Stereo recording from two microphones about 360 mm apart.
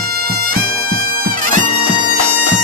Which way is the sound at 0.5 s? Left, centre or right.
Right.